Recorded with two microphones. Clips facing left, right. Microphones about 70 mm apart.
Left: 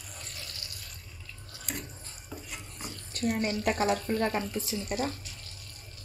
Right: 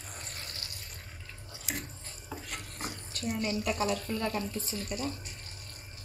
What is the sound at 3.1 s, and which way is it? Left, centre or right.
A woman's voice, left.